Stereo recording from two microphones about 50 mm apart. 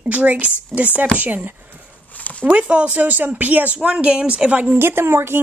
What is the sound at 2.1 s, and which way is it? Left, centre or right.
Dog, left.